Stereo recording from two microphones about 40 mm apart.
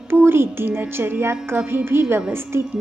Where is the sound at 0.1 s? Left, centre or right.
Right.